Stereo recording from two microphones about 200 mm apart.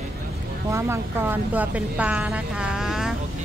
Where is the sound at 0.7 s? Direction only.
10° right (ahead or behind).